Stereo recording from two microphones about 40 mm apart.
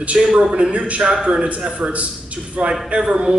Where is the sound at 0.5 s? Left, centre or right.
Right.